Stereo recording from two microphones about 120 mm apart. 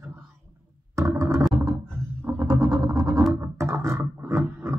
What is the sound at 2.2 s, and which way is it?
Music, 30° right (ahead or behind).